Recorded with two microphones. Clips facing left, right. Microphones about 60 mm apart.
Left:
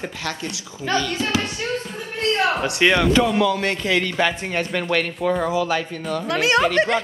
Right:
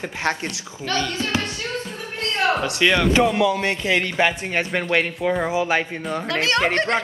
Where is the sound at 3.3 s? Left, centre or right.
Centre.